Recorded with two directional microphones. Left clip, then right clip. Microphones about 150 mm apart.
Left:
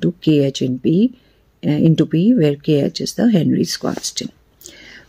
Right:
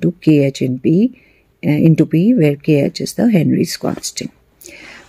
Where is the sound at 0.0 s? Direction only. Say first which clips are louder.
Right 3 dB; 15° right (ahead or behind).